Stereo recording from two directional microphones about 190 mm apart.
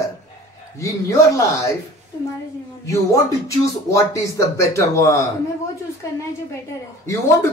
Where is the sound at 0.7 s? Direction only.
15° left (ahead or behind).